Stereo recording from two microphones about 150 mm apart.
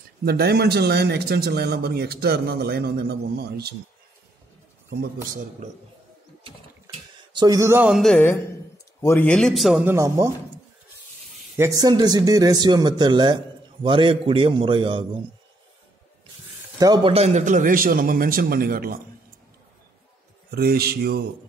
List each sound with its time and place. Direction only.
0.2 s a man's voice: 90° right
4.8 s a man's voice: 70° right (ahead or behind)
6.4 s a sound: 35° right (ahead or behind); by 7.9 s 15° right (ahead or behind)
7.9 s a man's voice: centre (ahead or behind)
9.0 s a man's voice: 15° left (ahead or behind)
9.8 s speech: 20° right (ahead or behind)
11.5 s a man's voice: 20° right (ahead or behind)
16.7 s a man's voice: 25° right (ahead or behind)
17.1 s a man's voice: 45° right (ahead or behind); by 18.9 s 80° right
20.5 s a man's voice: 90° right